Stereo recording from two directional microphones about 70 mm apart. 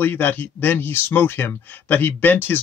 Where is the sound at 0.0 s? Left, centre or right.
Left.